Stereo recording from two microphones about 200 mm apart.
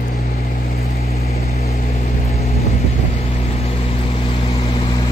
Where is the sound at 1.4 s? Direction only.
30° left (ahead or behind).